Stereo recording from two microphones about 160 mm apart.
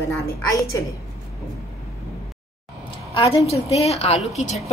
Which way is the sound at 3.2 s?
35° left (ahead or behind).